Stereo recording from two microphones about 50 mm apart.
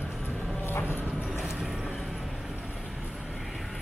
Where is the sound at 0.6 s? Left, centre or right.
Left.